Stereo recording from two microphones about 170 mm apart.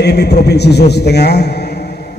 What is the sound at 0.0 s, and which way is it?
A man's voice, 75° left (ahead or behind).